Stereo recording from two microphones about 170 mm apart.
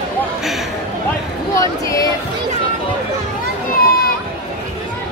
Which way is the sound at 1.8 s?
20° left (ahead or behind).